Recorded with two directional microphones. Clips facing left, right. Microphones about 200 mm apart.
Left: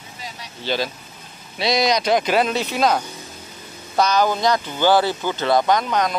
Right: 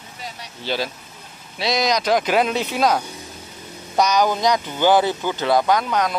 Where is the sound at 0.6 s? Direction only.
10° right (ahead or behind).